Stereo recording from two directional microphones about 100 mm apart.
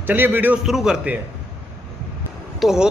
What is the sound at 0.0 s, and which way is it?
Speech, 20° right (ahead or behind).